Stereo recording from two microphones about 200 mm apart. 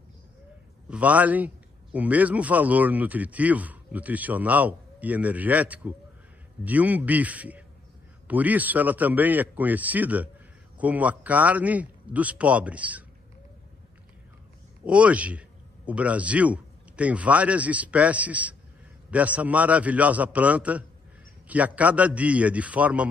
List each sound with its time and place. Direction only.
0.8 s a man's voice: 5° right (ahead or behind)
14.9 s a man's voice: 5° right (ahead or behind)